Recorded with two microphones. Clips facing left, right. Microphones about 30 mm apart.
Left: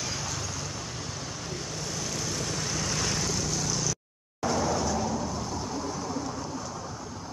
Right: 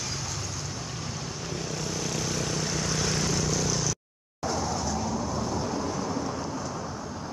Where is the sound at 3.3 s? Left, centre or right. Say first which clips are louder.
Right 3 dB; centre.